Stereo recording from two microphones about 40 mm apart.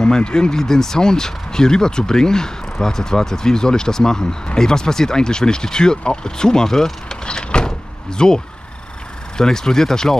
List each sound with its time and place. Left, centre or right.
0.0 s speech: centre
7.2 s vehicle: left
8.2 s speech: centre
9.4 s speech: centre